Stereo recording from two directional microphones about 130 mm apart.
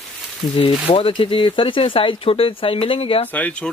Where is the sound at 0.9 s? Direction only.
45° left (ahead or behind).